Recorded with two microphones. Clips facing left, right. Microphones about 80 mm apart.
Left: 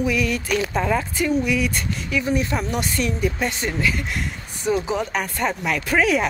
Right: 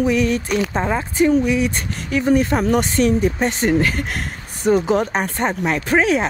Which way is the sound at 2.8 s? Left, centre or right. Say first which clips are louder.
Right 6 dB; right.